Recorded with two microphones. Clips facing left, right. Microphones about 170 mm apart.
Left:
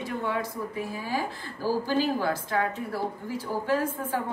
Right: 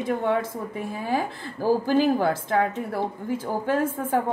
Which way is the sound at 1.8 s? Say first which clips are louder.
Right 5 dB; 55° right (ahead or behind).